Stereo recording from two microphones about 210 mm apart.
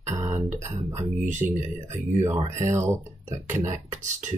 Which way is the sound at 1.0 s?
35° right (ahead or behind).